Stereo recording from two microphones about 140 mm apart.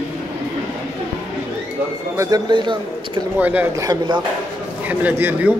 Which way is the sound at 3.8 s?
25° right (ahead or behind).